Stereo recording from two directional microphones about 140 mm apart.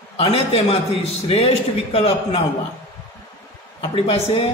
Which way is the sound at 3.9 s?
45° left (ahead or behind).